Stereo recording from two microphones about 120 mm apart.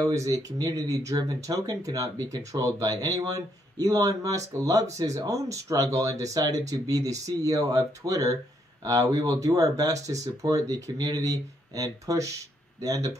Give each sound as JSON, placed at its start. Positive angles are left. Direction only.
{"t": 0.1, "sound": "speech", "side_deg": -30}